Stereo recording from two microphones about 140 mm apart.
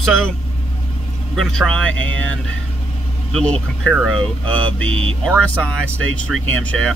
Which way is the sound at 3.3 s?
5° left (ahead or behind).